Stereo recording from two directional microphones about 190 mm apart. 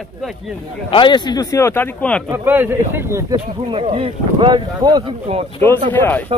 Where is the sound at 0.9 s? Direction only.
25° left (ahead or behind); by 2.2 s 10° left (ahead or behind).